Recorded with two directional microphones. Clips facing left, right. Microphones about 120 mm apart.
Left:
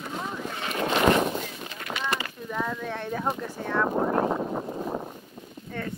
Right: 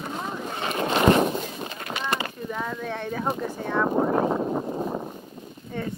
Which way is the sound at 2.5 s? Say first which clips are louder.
Left 2 dB; 5° right (ahead or behind).